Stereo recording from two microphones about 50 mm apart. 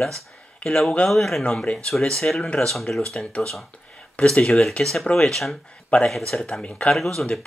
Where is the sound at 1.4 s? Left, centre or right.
Centre.